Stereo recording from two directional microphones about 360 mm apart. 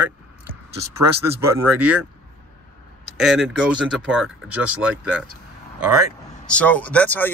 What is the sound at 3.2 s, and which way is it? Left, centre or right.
Speech, centre.